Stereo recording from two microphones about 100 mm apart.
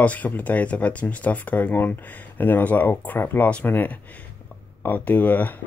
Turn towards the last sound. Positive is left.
turn(degrees=15)  # may be behind; listen again after turning